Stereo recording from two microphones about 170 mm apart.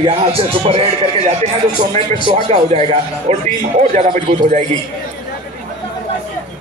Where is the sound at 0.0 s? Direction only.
35° right (ahead or behind).